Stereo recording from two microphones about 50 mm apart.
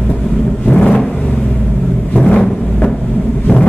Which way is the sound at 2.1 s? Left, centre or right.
Left.